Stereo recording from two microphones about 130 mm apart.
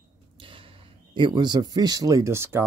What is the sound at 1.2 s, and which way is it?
Speech, 35° right (ahead or behind).